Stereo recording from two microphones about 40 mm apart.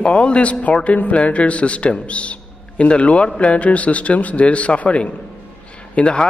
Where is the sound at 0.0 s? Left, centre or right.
Left.